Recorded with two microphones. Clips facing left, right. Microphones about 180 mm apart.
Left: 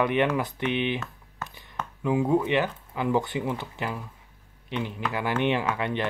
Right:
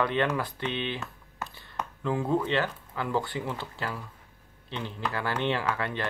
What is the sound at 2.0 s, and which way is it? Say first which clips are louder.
Speech: left 4 dB; 15° left (ahead or behind).